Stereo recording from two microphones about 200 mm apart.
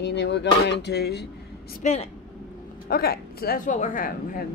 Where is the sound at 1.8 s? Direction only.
35° left (ahead or behind).